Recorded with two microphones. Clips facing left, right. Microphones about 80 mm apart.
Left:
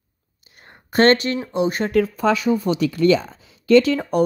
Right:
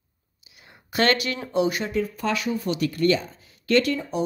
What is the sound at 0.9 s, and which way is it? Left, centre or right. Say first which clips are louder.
Speech: left 7 dB; left.